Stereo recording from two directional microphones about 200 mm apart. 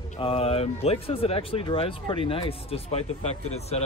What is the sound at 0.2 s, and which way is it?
Speech, 30° left (ahead or behind).